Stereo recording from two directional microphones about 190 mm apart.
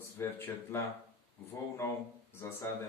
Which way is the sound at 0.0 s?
10° left (ahead or behind).